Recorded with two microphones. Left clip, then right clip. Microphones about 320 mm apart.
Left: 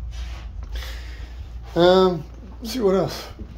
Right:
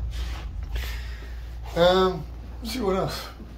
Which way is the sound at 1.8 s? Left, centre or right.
Left.